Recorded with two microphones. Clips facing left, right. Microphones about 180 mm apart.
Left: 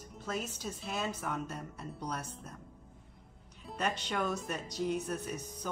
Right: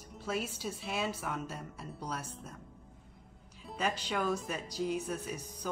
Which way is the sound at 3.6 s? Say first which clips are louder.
Even; centre (ahead or behind).